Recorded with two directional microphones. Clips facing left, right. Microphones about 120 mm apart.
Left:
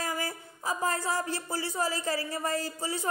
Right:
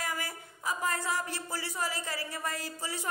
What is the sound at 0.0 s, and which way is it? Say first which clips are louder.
A woman's voice: left 3 dB; 30° left (ahead or behind).